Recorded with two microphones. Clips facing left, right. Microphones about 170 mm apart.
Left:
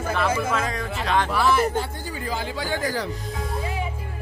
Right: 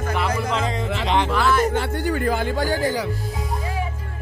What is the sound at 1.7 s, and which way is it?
A man's voice, 70° right (ahead or behind).